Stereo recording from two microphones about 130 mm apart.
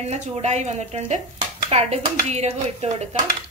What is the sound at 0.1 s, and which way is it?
Speech, 60° right (ahead or behind).